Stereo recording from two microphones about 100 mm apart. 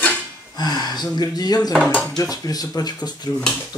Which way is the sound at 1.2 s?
40° left (ahead or behind).